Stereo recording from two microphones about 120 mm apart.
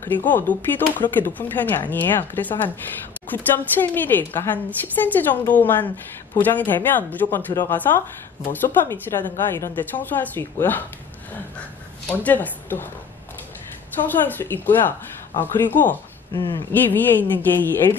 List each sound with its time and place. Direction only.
0.0 s a woman's voice: 15° left (ahead or behind)
12.1 s a woman's voice: 15° left (ahead or behind)
14.2 s a woman's voice: 15° left (ahead or behind)